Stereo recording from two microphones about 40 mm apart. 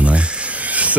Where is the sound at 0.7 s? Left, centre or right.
Right.